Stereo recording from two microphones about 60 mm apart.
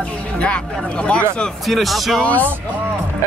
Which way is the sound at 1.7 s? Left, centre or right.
Centre.